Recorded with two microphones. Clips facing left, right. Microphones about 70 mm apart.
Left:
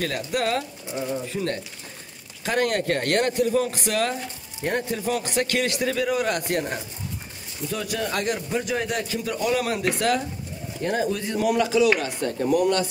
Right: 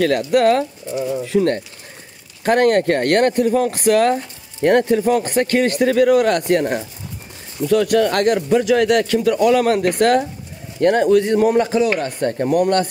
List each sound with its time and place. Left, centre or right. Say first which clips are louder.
0.3 s speech: right 10 dB; right
1.2 s speech: right 11 dB; right
2.4 s speech: right 9 dB; right
4.6 s speech: right 12 dB; right
4.9 s speech: right 9 dB; right
10.8 s speech: right 12 dB; right
11.4 s speech: right 4 dB; right